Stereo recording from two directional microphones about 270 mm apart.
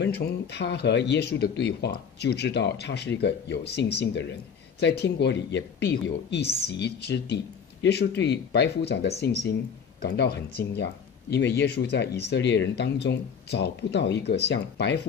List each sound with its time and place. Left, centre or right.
0.0 s a man's voice: left